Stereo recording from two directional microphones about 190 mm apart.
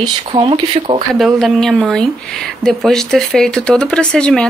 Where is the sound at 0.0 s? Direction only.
25° right (ahead or behind).